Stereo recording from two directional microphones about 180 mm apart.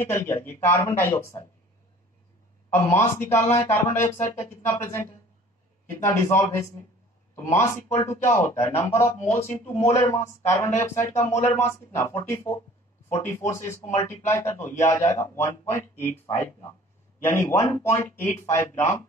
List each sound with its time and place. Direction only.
0.0 s a man's voice: 15° left (ahead or behind)
2.7 s a man's voice: 15° left (ahead or behind)